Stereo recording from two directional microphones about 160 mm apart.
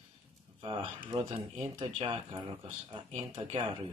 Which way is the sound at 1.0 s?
30° right (ahead or behind).